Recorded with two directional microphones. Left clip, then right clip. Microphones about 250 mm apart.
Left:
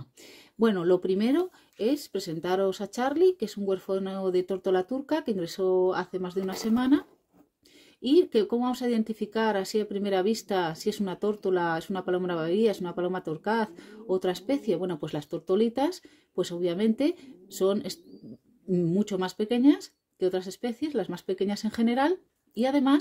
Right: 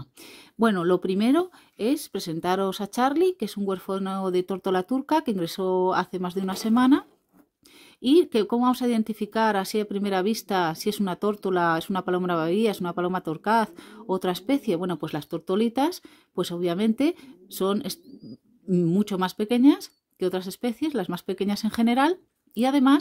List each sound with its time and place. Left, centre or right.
0.2 s speech: right